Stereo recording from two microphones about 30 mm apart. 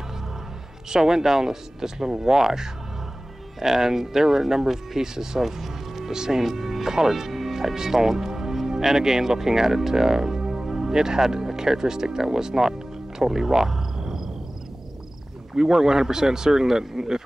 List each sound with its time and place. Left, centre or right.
0.8 s speech: centre
5.4 s music: centre
6.1 s speech: right
6.4 s speech: centre
13.2 s a sound: centre
15.5 s speech: centre